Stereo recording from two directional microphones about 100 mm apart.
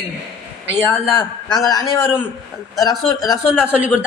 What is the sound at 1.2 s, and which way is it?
Speech, 40° left (ahead or behind).